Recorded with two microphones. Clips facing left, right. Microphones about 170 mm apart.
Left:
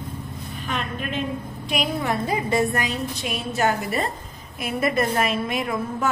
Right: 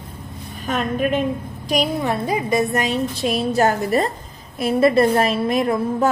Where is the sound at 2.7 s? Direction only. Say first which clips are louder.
Right 5 dB; 25° right (ahead or behind).